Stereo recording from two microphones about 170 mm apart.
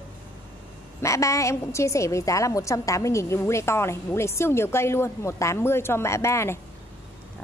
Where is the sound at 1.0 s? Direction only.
20° left (ahead or behind).